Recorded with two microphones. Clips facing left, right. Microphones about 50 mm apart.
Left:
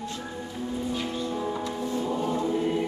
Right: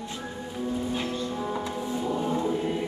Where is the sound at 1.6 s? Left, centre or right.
Centre.